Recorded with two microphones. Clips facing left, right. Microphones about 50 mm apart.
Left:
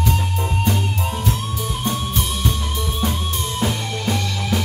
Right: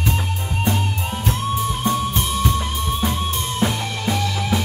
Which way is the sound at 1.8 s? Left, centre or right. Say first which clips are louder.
Right 2 dB; right.